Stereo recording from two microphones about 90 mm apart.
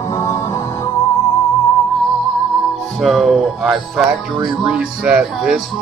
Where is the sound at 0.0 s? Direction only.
35° left (ahead or behind).